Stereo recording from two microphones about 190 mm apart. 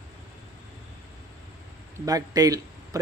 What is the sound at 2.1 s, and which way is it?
Speech, 20° right (ahead or behind).